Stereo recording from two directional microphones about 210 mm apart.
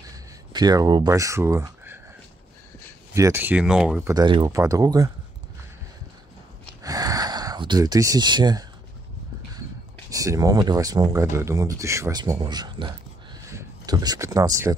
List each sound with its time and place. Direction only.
0.1 s speech: 20° right (ahead or behind)
3.2 s speech: 10° right (ahead or behind)
4.1 s speech: 20° right (ahead or behind)
6.8 s a sound: 15° right (ahead or behind)
10.0 s speech: 15° right (ahead or behind)
13.5 s a sound: 15° right (ahead or behind)